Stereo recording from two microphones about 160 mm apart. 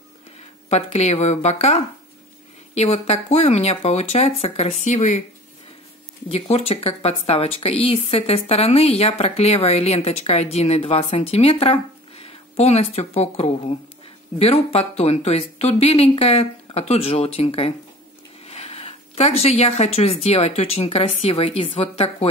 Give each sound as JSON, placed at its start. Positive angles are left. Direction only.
{"t": 0.7, "sound": "speech", "side_deg": 40}
{"t": 6.2, "sound": "speech", "side_deg": 40}
{"t": 18.4, "sound": "a sound", "side_deg": 40}
{"t": 20.2, "sound": "speech", "side_deg": 40}